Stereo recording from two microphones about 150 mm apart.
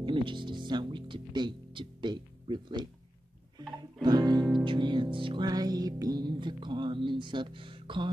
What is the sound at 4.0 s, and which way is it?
Music, 25° right (ahead or behind).